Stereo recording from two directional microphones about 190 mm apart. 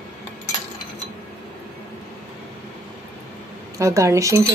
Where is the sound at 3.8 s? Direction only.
15° right (ahead or behind).